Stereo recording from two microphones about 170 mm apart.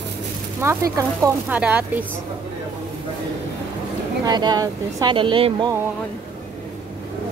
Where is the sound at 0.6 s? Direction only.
20° right (ahead or behind).